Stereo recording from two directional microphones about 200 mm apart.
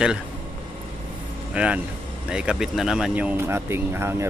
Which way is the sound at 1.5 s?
5° right (ahead or behind).